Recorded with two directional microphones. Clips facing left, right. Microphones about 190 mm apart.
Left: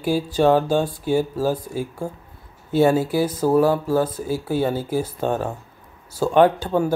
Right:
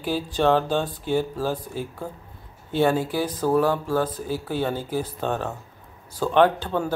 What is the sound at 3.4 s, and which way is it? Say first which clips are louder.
A man's voice: left 3 dB; 10° left (ahead or behind).